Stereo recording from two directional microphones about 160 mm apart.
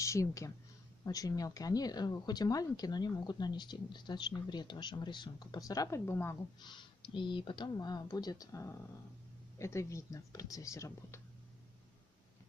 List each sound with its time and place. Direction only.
0.0 s speech: 20° left (ahead or behind)
6.6 s speech: 30° left (ahead or behind)